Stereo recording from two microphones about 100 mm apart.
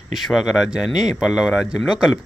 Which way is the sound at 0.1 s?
Centre (ahead or behind).